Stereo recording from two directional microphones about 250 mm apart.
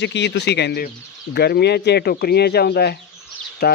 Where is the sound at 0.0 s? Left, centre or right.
Left.